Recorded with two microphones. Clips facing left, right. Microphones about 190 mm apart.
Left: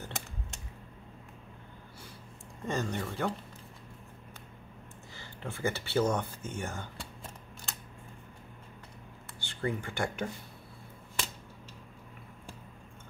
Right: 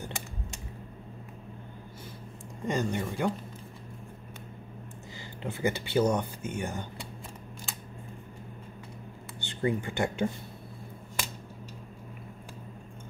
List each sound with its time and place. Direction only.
2.6 s speech: 15° right (ahead or behind)
5.4 s speech: 15° right (ahead or behind)
9.4 s speech: 20° right (ahead or behind)